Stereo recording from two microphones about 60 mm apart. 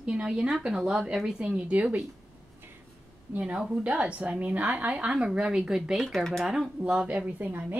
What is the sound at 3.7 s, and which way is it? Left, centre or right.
A woman's voice, centre.